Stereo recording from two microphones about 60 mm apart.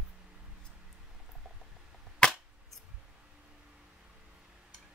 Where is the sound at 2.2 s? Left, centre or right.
Centre.